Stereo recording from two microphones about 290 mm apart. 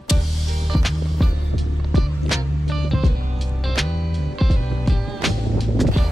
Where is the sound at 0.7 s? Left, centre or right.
Centre.